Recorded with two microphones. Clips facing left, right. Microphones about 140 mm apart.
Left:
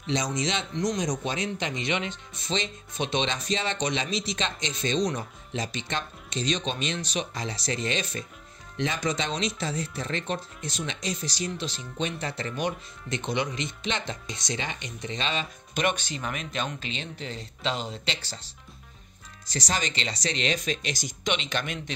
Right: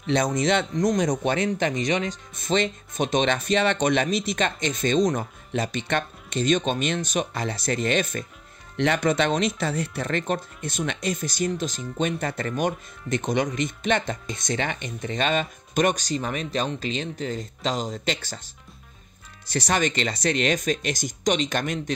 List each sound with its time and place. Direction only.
0.0 s a man's voice: 55° right (ahead or behind)
8.7 s a man's voice: 65° right (ahead or behind); by 18.5 s 50° right (ahead or behind)
19.4 s a man's voice: 60° right (ahead or behind); by 21.9 s 45° right (ahead or behind)